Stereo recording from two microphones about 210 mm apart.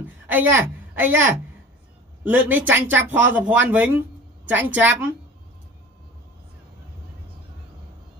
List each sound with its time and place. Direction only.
0.0 s a woman's voice: 10° right (ahead or behind)